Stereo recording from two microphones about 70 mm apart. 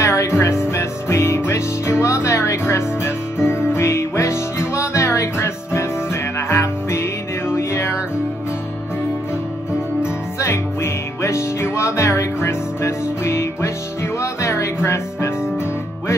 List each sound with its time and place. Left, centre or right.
0.0 s music: left
10.4 s music: left